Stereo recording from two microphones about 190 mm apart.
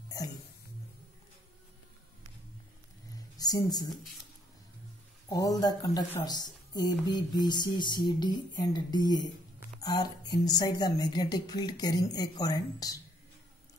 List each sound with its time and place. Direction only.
0.2 s a sound: 20° left (ahead or behind)
3.3 s speech: 20° left (ahead or behind)
5.3 s a woman's voice: 20° left (ahead or behind)